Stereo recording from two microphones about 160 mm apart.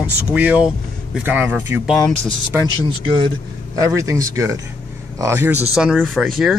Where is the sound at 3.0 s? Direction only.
30° right (ahead or behind).